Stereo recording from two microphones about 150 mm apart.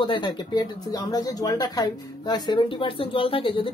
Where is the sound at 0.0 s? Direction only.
35° left (ahead or behind).